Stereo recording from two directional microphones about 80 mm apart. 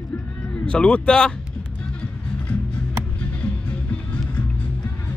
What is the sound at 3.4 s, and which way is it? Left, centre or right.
Music, centre.